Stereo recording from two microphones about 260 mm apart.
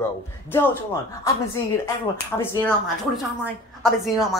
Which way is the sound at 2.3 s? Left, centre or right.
Centre.